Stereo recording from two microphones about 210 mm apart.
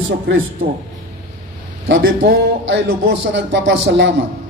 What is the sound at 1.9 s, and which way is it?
A man's voice, 60° right (ahead or behind).